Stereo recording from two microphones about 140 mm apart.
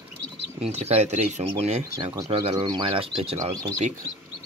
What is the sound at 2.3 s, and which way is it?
Speech, 35° right (ahead or behind).